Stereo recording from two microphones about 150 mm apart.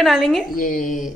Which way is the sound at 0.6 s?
60° left (ahead or behind).